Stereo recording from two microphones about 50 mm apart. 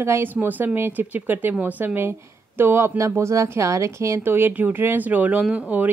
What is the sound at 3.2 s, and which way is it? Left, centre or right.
A woman's voice, right.